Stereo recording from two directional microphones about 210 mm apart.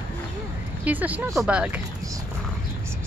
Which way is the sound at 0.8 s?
5° right (ahead or behind).